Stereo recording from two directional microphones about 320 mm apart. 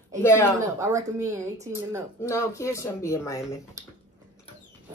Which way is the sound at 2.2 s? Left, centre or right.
Centre.